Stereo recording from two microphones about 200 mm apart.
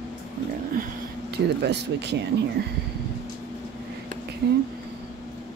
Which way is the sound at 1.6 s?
55° right (ahead or behind).